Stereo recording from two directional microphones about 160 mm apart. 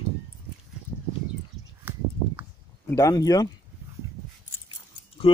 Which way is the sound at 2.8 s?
20° left (ahead or behind).